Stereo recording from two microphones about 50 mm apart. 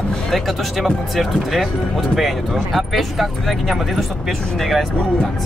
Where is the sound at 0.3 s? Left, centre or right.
Centre.